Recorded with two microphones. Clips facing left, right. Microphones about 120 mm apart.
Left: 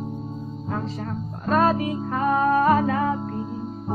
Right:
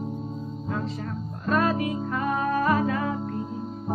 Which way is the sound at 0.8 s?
45° left (ahead or behind).